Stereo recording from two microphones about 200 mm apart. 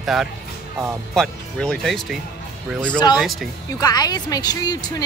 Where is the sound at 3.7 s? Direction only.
20° left (ahead or behind).